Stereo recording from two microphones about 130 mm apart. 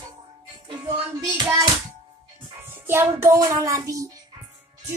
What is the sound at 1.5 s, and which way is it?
Hands, 30° right (ahead or behind).